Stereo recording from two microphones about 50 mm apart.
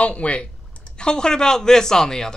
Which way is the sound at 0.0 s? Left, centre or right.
Left.